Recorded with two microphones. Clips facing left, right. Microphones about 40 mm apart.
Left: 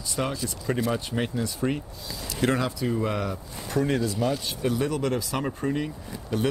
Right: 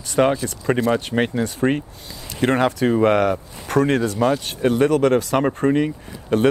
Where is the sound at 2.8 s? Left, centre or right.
Right.